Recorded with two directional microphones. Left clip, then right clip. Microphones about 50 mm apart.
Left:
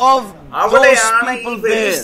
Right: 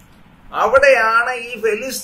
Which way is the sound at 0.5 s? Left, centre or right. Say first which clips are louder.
Left 2 dB; left.